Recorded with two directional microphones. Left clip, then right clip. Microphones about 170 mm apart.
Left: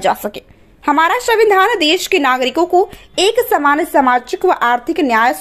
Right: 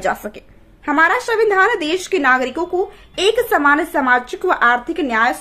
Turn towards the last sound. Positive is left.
turn(degrees=35)  # may be behind; listen again after turning